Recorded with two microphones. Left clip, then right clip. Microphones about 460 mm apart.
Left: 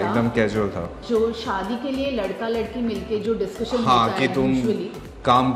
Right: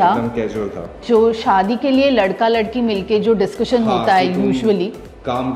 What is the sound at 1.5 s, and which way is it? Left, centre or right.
A woman's voice, right.